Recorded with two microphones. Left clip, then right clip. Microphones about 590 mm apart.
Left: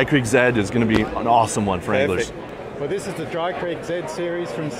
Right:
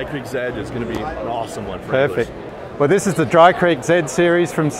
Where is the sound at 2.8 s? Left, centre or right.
Right.